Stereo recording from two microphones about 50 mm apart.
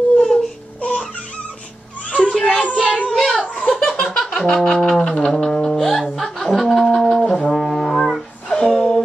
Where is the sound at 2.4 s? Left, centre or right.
Left.